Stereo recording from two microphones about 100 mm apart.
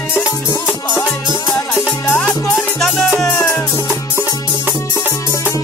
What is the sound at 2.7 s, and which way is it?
Music, centre (ahead or behind).